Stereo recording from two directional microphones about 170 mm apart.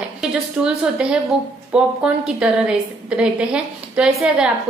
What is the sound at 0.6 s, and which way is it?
A woman's voice, 5° right (ahead or behind).